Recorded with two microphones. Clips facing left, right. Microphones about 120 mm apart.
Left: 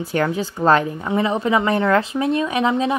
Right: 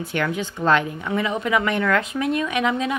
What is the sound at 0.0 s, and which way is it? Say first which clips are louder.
A woman's voice: left 4 dB; 35° left (ahead or behind).